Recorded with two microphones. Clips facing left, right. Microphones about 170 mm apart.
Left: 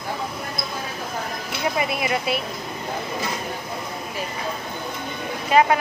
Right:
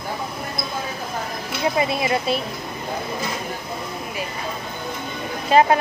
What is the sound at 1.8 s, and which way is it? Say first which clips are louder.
Speech: right 3 dB; 30° right (ahead or behind).